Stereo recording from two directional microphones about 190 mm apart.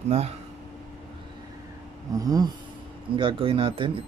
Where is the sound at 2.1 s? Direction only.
20° right (ahead or behind).